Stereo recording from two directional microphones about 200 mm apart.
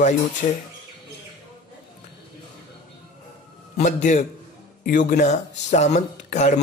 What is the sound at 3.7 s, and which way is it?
A man's voice, 35° left (ahead or behind).